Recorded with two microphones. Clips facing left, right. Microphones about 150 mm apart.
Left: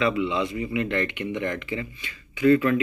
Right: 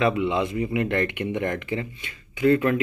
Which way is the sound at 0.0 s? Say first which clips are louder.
Right 2 dB; 55° right (ahead or behind).